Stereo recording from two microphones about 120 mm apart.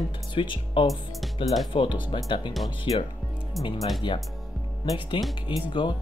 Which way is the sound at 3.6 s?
30° left (ahead or behind).